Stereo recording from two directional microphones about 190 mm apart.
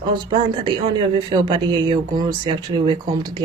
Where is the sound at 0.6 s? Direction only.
25° right (ahead or behind).